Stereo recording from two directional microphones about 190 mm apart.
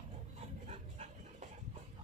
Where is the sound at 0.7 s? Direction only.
35° right (ahead or behind).